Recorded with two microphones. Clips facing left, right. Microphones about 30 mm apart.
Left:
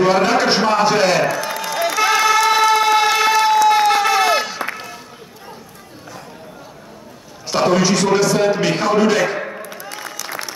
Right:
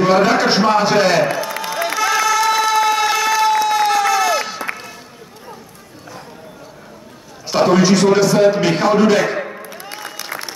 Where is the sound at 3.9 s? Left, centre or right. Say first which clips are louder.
Left 1 dB; left.